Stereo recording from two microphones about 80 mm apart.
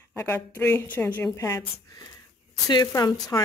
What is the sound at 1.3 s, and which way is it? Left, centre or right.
A woman's voice, left.